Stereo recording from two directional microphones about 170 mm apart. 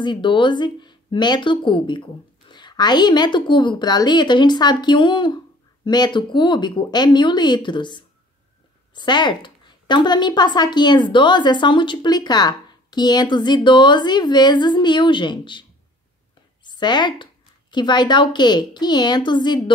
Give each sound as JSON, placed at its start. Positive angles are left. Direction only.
{"t": 0.0, "sound": "a woman's voice", "side_deg": 30}
{"t": 16.6, "sound": "speech", "side_deg": 25}